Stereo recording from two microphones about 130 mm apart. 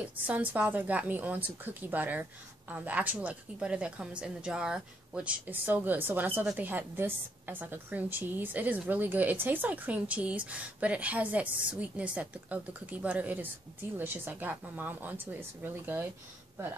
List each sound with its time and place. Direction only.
0.0 s a woman's voice: 10° right (ahead or behind)